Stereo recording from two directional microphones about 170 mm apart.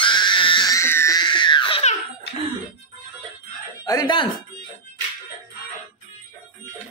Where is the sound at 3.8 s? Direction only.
25° left (ahead or behind).